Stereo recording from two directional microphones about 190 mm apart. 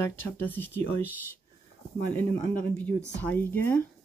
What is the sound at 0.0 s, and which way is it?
Speech, 10° left (ahead or behind).